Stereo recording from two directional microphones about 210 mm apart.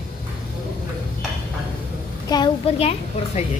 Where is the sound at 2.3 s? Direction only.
25° left (ahead or behind).